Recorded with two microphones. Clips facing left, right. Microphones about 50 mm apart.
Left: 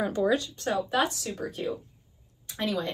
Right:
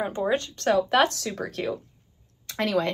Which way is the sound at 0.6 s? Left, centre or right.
Right.